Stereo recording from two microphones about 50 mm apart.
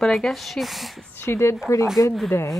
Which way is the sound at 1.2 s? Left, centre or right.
Left.